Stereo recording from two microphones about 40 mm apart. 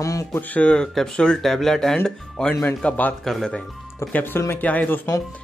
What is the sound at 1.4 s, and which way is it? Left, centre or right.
Speech, centre.